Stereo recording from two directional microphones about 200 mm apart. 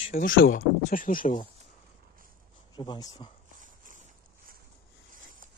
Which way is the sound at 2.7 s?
20° left (ahead or behind).